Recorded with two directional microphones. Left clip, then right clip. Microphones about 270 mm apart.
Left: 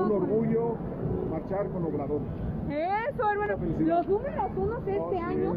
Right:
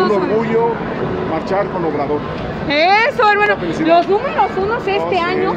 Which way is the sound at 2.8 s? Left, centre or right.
Centre.